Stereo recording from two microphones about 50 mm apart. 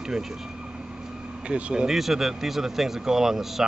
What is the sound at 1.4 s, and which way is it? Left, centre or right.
Speech, centre.